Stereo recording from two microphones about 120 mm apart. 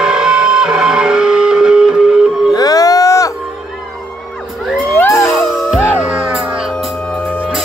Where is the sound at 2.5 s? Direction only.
30° left (ahead or behind).